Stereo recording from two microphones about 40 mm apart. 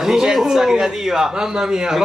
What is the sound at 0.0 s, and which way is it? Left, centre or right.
A man's voice, centre.